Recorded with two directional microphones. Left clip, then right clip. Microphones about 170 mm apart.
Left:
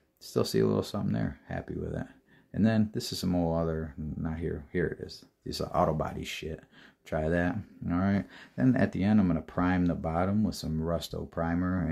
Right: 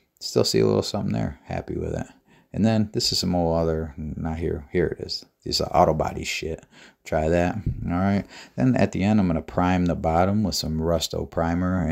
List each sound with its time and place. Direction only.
0.2 s speech: 30° right (ahead or behind)